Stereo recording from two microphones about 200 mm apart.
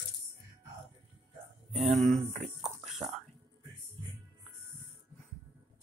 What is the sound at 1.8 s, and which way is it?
Speech, centre (ahead or behind).